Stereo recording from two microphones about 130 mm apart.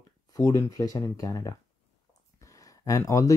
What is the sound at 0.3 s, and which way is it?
Speech, 25° left (ahead or behind).